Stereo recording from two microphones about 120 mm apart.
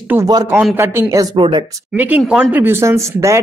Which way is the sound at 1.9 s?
15° right (ahead or behind).